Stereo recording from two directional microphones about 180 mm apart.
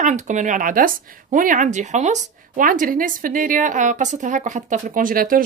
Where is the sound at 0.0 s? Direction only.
40° right (ahead or behind).